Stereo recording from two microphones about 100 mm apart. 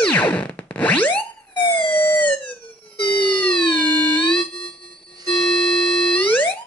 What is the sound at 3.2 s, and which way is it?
Music, 15° left (ahead or behind).